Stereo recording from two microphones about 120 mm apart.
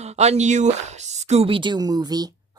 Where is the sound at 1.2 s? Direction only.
55° right (ahead or behind); by 2.3 s 35° right (ahead or behind).